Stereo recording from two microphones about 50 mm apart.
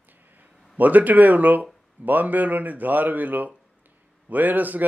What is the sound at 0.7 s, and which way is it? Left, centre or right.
Speech, right.